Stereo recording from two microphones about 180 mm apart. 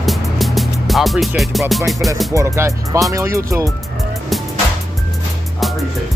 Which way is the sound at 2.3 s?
15° right (ahead or behind).